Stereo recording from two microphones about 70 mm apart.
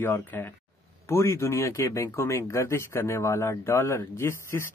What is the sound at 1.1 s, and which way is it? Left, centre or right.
Speech, left.